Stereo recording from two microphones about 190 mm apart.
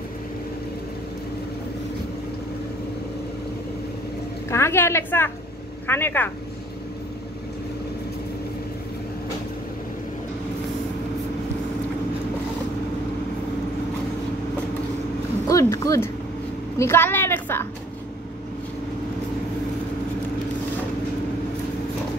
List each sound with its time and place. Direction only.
4.5 s a woman's voice: 15° left (ahead or behind)
15.4 s a sound: 15° left (ahead or behind)
16.7 s a woman's voice: 15° left (ahead or behind)